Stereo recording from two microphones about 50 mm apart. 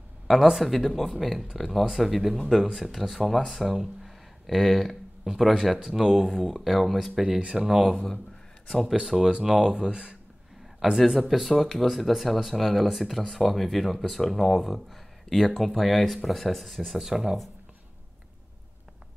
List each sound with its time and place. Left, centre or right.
0.3 s speech: centre
4.0 s a sound: centre
5.3 s speech: centre
7.2 s speech: centre
9.0 s speech: centre
11.0 s speech: centre
17.0 s speech: centre